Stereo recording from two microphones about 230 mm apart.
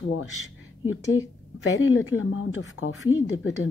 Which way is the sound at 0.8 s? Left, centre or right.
Left.